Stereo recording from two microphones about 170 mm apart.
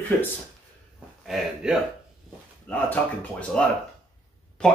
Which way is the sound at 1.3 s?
Centre (ahead or behind).